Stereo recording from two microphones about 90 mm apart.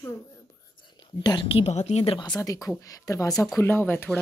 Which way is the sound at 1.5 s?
90° left.